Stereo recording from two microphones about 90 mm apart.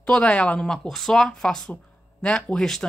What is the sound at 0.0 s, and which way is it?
Speech, 10° left (ahead or behind).